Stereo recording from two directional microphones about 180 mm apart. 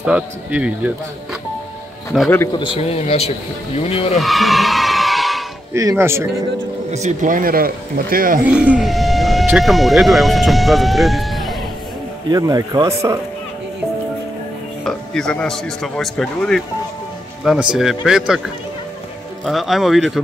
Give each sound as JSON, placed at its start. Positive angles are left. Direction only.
{"t": 0.0, "sound": "speech", "side_deg": -5}
{"t": 2.2, "sound": "speech", "side_deg": 15}
{"t": 2.6, "sound": "speech", "side_deg": 30}
{"t": 4.2, "sound": "a sound", "side_deg": 0}
{"t": 5.7, "sound": "speech", "side_deg": -15}
{"t": 6.9, "sound": "speech", "side_deg": -40}
{"t": 8.5, "sound": "speech", "side_deg": -5}
{"t": 12.3, "sound": "speech", "side_deg": -20}
{"t": 14.9, "sound": "a man's voice", "side_deg": 5}
{"t": 19.4, "sound": "a man's voice", "side_deg": 0}